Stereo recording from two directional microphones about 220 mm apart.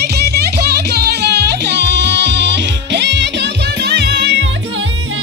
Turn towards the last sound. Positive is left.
turn(degrees=-50)  # may be behind; listen again after turning